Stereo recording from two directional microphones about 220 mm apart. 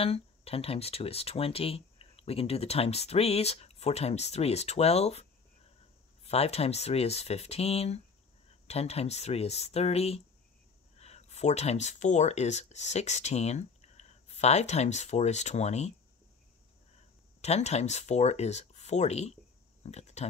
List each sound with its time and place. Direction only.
0.0 s speech: 25° left (ahead or behind)
6.2 s speech: 30° left (ahead or behind)
17.4 s speech: 30° left (ahead or behind)